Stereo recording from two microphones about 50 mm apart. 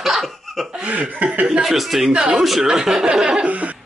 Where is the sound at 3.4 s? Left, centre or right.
Right.